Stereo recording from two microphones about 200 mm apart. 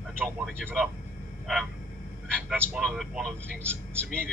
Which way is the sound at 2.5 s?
Centre (ahead or behind).